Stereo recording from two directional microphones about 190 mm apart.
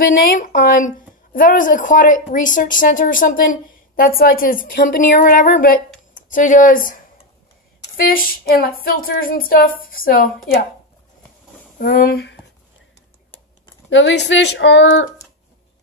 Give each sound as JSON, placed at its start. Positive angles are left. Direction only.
{"t": 0.0, "sound": "a woman's voice", "side_deg": 45}
{"t": 8.1, "sound": "a woman's voice", "side_deg": 50}
{"t": 11.8, "sound": "speech", "side_deg": 50}
{"t": 13.8, "sound": "speech", "side_deg": 75}